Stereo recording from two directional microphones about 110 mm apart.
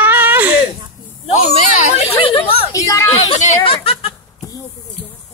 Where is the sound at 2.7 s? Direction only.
30° left (ahead or behind).